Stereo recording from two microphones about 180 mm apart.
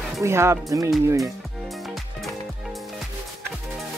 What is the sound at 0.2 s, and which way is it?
Speech, 15° right (ahead or behind).